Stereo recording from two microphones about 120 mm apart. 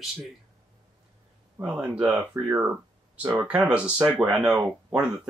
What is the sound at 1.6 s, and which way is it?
Speech, 15° right (ahead or behind).